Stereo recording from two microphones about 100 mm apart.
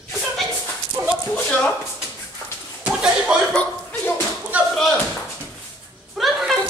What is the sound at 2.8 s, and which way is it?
Slap, 10° right (ahead or behind).